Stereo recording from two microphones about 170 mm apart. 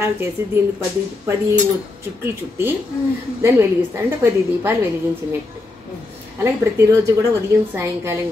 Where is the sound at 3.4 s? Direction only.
15° right (ahead or behind).